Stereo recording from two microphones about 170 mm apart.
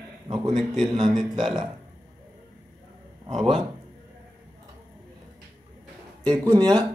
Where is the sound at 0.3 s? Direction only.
25° right (ahead or behind).